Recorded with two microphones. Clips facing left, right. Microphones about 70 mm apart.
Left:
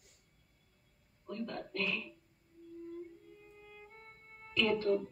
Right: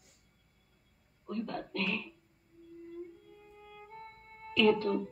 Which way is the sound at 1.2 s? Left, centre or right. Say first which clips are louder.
Right 3 dB; right.